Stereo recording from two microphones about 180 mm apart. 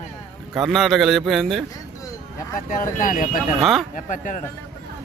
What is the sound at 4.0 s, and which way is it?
Speech, 45° left (ahead or behind).